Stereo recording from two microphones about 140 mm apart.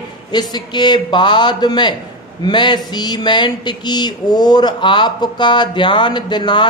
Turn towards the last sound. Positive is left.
turn(degrees=35)  # may be behind; listen again after turning